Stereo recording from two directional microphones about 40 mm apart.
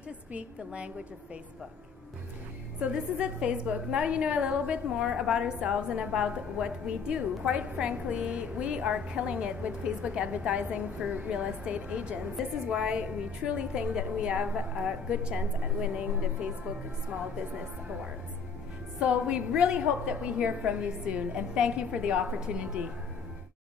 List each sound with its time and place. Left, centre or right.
0.3 s a woman's voice: right
2.9 s a woman's voice: right
18.9 s a woman's voice: right